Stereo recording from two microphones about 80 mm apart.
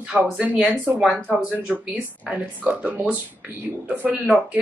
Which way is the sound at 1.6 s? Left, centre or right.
Centre.